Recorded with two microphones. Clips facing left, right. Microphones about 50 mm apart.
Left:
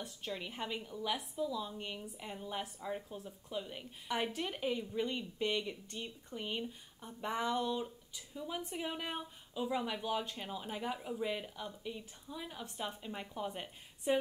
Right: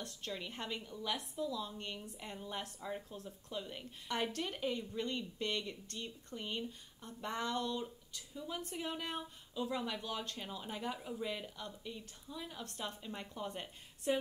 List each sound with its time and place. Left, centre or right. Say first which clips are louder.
0.0 s a woman's voice: left 1 dB; centre